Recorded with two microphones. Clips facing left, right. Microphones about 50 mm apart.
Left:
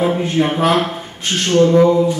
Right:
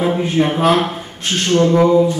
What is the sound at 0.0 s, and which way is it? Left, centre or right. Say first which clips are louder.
A man's voice: even; centre.